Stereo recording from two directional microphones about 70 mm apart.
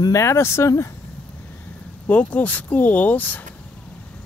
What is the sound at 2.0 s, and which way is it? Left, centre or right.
Speech, left.